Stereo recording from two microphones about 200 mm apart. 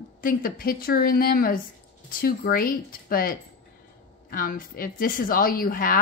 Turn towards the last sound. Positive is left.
turn(degrees=45)  # may be behind; listen again after turning